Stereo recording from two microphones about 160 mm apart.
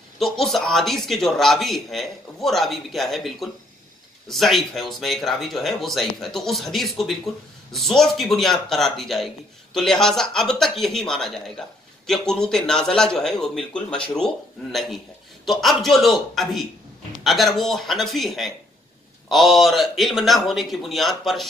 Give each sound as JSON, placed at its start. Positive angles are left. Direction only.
{"t": 0.2, "sound": "a man's voice", "side_deg": 0}